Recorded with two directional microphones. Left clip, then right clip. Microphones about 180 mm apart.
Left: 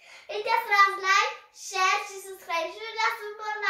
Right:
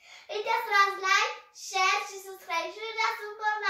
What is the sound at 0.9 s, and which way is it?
Child singing, 15° left (ahead or behind).